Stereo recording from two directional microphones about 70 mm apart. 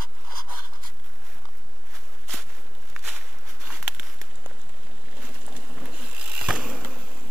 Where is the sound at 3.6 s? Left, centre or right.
Centre.